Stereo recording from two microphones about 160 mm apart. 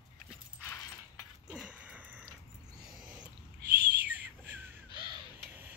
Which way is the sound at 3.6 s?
85° right.